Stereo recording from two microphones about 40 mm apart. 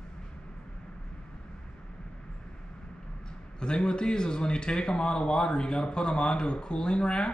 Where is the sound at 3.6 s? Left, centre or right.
Left.